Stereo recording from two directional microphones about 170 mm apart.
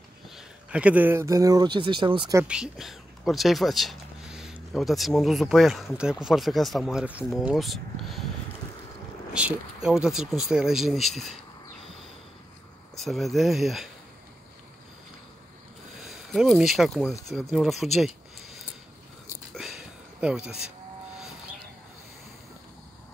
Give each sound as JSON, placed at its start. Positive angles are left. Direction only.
{"t": 0.4, "sound": "speech", "side_deg": -5}
{"t": 2.3, "sound": "speech", "side_deg": -5}
{"t": 9.3, "sound": "speech", "side_deg": -5}
{"t": 12.9, "sound": "speech", "side_deg": 0}
{"t": 16.0, "sound": "speech", "side_deg": 0}
{"t": 17.9, "sound": "a sound", "side_deg": 0}